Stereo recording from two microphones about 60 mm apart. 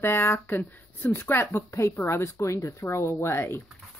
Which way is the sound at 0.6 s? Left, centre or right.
Left.